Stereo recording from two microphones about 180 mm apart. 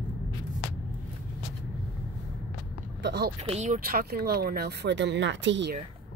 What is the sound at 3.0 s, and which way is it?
Speech, 70° right (ahead or behind).